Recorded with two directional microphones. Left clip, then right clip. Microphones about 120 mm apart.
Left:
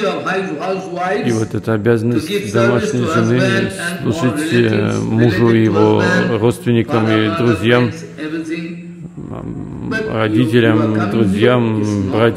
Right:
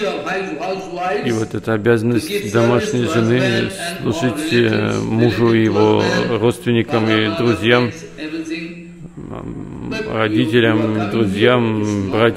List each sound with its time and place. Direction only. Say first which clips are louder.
0.0 s a man's voice: left 3 dB; 45° left (ahead or behind)
1.2 s speech: left 2 dB; 15° left (ahead or behind); by 2.6 s 10° right (ahead or behind)
3.3 s a man's voice: left 2 dB; 50° left (ahead or behind)
3.6 s speech: left 2 dB; centre (ahead or behind)
10.0 s speech: left 1 dB; 5° left (ahead or behind)